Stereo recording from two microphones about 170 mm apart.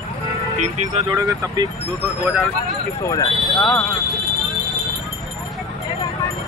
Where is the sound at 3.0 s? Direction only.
20° left (ahead or behind).